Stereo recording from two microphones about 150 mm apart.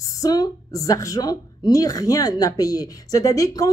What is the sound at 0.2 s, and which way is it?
A woman's voice, 25° left (ahead or behind).